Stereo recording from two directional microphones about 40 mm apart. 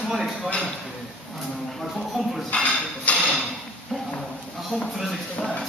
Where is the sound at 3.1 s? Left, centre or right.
Left.